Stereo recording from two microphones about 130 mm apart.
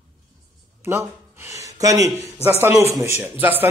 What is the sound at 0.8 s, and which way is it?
A man's voice, 20° right (ahead or behind).